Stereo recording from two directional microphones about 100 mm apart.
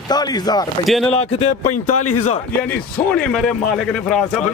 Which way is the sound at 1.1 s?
90° left.